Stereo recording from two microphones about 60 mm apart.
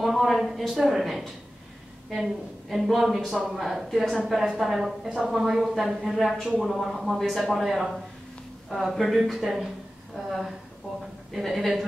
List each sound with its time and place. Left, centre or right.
0.0 s a woman's voice: centre